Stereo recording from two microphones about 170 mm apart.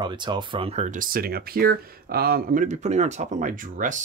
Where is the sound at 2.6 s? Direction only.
40° right (ahead or behind).